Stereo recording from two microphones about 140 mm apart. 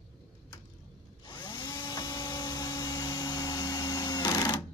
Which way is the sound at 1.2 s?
35° left (ahead or behind).